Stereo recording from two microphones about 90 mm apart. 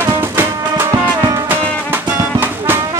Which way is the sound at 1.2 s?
50° right (ahead or behind).